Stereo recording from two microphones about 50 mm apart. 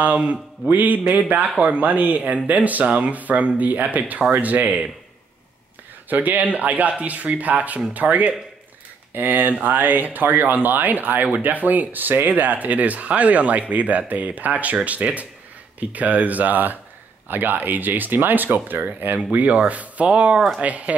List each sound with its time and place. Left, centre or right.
0.7 s speech: right
6.0 s speech: right
20.3 s speech: centre
20.6 s speech: right